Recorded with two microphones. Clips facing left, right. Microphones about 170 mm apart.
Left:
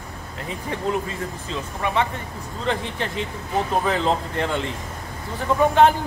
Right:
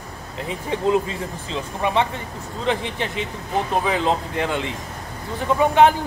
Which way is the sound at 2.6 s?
10° right (ahead or behind).